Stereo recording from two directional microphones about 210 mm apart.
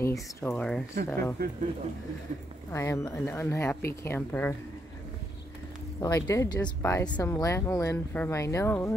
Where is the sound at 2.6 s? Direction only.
15° left (ahead or behind).